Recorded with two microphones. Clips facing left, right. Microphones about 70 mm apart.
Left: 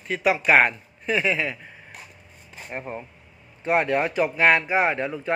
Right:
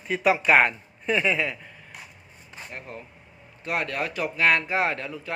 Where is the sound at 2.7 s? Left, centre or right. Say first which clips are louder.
Left 8 dB; left.